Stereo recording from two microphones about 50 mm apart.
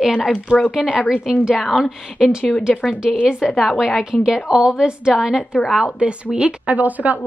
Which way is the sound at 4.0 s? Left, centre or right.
Centre.